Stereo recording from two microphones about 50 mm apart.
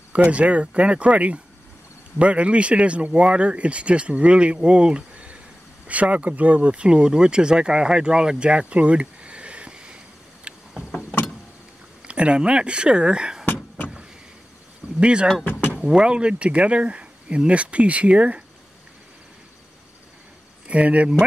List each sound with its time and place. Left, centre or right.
0.1 s speech: right
10.5 s vehicle: right
12.1 s speech: right
15.0 s speech: right
15.4 s vehicle: left
15.9 s speech: centre
20.6 s speech: right